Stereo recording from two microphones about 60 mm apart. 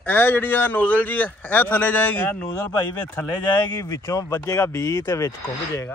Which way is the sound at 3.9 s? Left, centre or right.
Left.